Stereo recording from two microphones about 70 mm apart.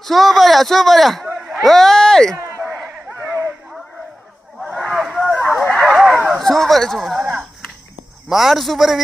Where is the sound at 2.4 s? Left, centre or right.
Right.